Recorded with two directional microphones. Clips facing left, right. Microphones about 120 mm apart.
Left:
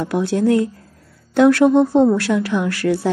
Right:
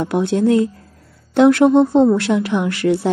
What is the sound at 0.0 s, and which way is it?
Speech, 20° right (ahead or behind).